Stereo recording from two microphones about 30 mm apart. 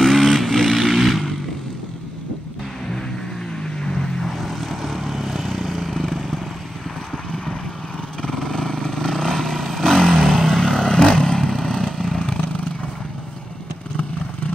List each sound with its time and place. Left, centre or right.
0.0 s vehicle: centre
3.8 s vehicle: centre
8.3 s vehicle: centre
11.0 s vehicle: left